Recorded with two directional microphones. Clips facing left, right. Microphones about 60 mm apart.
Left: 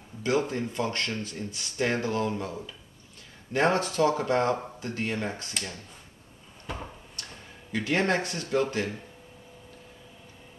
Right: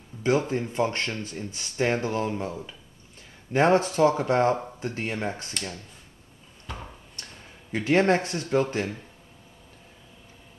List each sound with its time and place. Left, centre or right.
0.2 s speech: right
7.2 s tick-tock: right
7.7 s speech: right